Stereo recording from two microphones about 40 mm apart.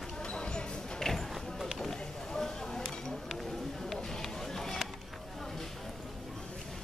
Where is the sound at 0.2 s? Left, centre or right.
Left.